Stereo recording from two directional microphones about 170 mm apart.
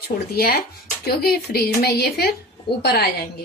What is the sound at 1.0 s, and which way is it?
Speech, 65° left (ahead or behind).